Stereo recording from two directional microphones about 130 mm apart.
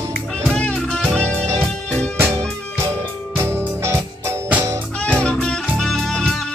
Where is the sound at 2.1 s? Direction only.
20° right (ahead or behind).